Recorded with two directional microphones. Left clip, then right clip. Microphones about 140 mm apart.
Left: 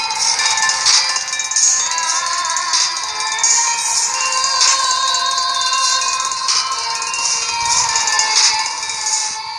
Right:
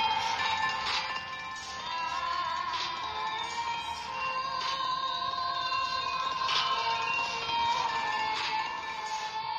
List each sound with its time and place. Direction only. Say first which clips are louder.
0.2 s music: left 13 dB; 25° left (ahead or behind)
3.4 s music: left 17 dB; 30° left (ahead or behind)
5.7 s a sound: left 15 dB; 30° left (ahead or behind)
7.9 s music: left 14 dB; 25° left (ahead or behind)